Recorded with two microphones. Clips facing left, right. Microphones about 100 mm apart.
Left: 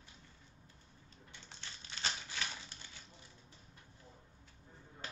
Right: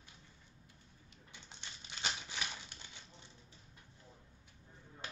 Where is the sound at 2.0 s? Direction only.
15° right (ahead or behind).